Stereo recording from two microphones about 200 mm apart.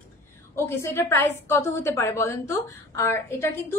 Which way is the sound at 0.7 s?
15° left (ahead or behind).